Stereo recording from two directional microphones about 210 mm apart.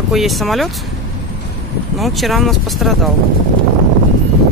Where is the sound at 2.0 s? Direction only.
Centre (ahead or behind).